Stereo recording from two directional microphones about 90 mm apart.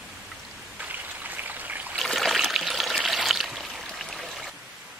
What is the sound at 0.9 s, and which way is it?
Stream, 20° right (ahead or behind).